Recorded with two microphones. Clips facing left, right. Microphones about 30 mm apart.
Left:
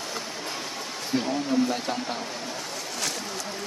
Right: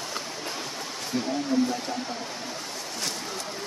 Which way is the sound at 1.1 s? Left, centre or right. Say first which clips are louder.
Left 3 dB; left.